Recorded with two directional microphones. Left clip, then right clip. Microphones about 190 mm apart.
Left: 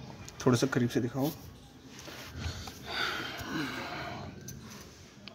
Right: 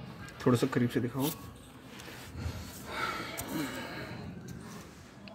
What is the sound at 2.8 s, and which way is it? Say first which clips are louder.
Gasp: left 2 dB; 30° left (ahead or behind).